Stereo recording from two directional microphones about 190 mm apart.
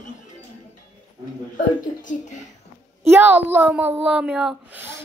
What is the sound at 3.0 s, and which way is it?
A woman's voice, 10° right (ahead or behind).